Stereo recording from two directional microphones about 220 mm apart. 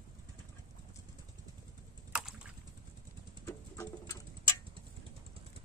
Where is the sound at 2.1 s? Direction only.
5° right (ahead or behind).